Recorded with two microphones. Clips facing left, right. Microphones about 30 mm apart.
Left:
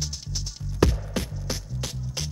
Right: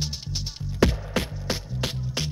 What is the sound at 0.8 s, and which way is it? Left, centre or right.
Music, right.